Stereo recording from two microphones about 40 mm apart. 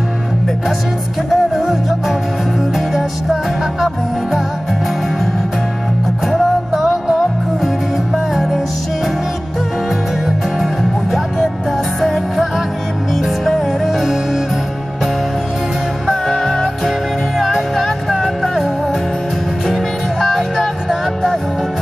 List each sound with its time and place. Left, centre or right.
1.3 s music: centre
6.2 s music: centre
10.2 s music: centre
16.1 s music: centre
19.7 s music: centre